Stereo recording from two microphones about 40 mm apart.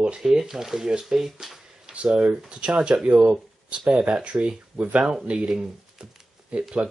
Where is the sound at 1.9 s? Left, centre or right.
Right.